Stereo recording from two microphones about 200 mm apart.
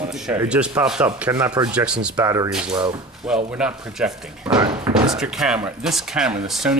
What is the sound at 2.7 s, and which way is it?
Speech, 25° right (ahead or behind).